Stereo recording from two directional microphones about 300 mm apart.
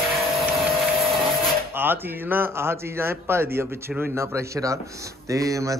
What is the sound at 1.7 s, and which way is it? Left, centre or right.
A man's voice, centre.